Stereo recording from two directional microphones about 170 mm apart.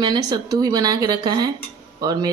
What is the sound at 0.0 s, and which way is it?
Speech, 25° right (ahead or behind).